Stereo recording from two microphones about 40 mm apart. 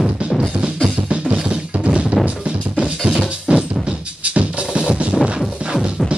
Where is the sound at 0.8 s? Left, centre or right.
Right.